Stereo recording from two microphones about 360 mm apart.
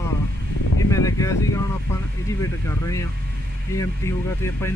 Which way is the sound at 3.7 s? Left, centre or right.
Centre.